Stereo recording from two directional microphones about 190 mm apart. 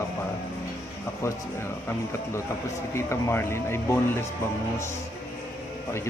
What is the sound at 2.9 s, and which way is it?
Speech, 15° left (ahead or behind).